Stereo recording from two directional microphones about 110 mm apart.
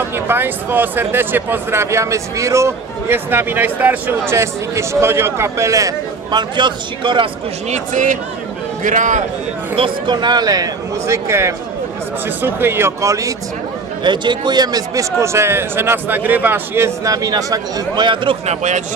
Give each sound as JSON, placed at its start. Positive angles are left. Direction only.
{"t": 0.3, "sound": "speech", "side_deg": -20}
{"t": 9.8, "sound": "a man's voice", "side_deg": -45}
{"t": 14.0, "sound": "a man's voice", "side_deg": -45}
{"t": 18.5, "sound": "speech", "side_deg": -90}